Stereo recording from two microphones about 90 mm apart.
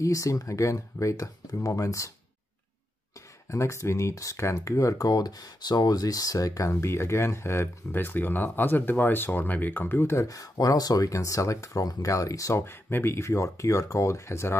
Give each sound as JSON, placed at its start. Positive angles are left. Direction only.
{"t": 0.0, "sound": "speech", "side_deg": 35}
{"t": 3.4, "sound": "speech", "side_deg": 35}